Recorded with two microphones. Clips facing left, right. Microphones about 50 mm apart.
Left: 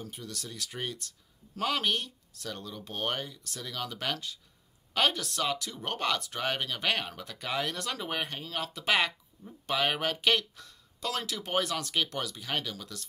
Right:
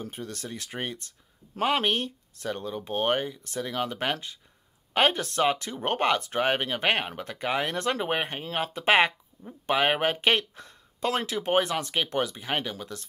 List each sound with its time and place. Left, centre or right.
0.0 s speech: right